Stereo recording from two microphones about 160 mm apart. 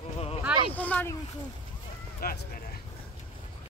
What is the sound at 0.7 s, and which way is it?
Speech, 10° left (ahead or behind).